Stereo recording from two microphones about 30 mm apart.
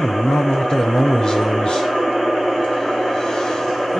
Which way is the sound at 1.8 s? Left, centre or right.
Centre.